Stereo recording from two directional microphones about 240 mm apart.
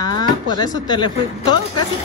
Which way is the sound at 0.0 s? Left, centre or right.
Centre.